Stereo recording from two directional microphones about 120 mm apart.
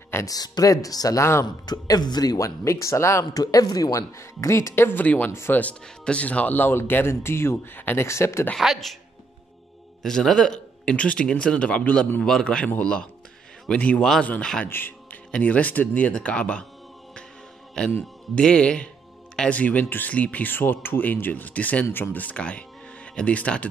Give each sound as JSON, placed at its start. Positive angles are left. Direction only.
{"t": 0.1, "sound": "speech", "side_deg": 30}
{"t": 8.5, "sound": "speech", "side_deg": 0}
{"t": 10.0, "sound": "a man's voice", "side_deg": 5}
{"t": 17.9, "sound": "a man's voice", "side_deg": 10}